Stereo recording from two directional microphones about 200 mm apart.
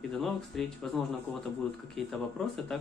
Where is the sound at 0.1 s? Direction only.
Centre (ahead or behind).